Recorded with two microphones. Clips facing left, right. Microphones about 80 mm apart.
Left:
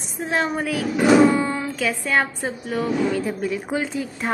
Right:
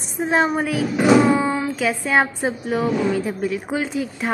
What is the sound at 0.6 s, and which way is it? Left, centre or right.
A woman's voice, centre.